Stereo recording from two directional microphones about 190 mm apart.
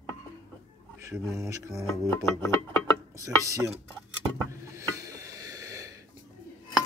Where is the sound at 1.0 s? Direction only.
15° right (ahead or behind).